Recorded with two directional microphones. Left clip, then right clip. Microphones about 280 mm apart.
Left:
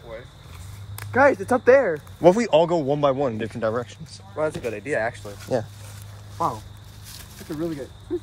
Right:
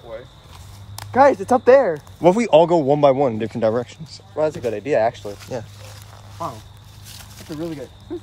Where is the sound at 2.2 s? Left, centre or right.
Centre.